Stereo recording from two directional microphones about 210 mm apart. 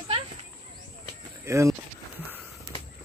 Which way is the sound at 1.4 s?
15° right (ahead or behind).